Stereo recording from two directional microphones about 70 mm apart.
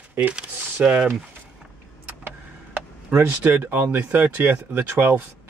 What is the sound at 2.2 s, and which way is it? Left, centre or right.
Speech, right.